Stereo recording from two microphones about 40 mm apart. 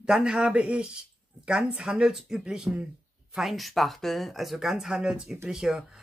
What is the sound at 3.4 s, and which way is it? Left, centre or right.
Speech, centre.